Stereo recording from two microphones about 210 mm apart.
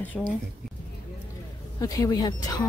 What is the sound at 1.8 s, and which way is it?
Speech, 15° left (ahead or behind).